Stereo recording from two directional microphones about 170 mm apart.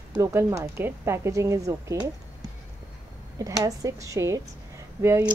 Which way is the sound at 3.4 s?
20° right (ahead or behind).